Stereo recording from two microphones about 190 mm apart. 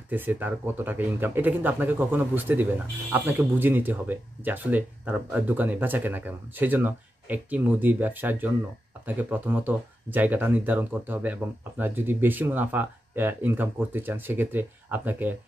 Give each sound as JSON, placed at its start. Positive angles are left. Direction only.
{"t": 0.1, "sound": "speech", "side_deg": -10}